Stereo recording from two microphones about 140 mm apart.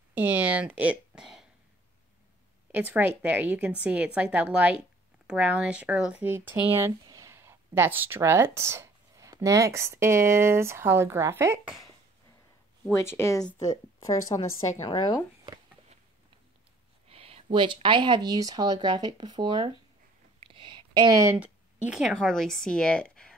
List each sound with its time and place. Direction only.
0.1 s a sound: 10° right (ahead or behind)
2.7 s a woman's voice: 10° right (ahead or behind)
13.2 s a woman's voice: 15° left (ahead or behind)
17.1 s speech: 45° right (ahead or behind)
20.3 s a sound: 40° right (ahead or behind); by 21.4 s 20° right (ahead or behind)
21.4 s speech: 5° right (ahead or behind)